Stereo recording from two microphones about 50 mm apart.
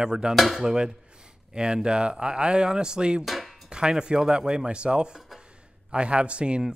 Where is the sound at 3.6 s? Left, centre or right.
Centre.